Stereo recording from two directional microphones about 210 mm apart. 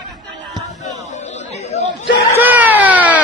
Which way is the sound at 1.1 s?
30° left (ahead or behind).